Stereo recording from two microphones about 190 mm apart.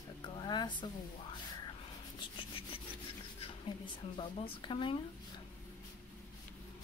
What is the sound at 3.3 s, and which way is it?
Speech, 30° left (ahead or behind).